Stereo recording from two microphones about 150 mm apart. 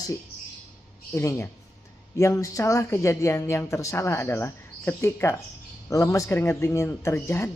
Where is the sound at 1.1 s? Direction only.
15° left (ahead or behind).